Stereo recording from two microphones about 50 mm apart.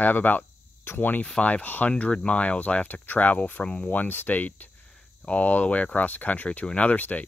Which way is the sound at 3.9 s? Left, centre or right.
Left.